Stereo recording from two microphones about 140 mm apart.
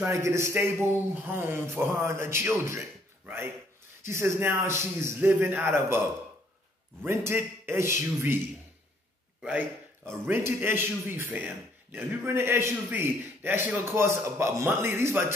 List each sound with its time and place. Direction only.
0.0 s a man's voice: 20° right (ahead or behind)
7.1 s a man's voice: 20° right (ahead or behind)
9.4 s a man's voice: 5° right (ahead or behind)
10.0 s a man's voice: 20° right (ahead or behind)